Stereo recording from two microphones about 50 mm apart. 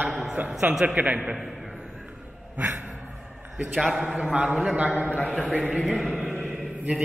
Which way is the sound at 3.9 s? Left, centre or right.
Centre.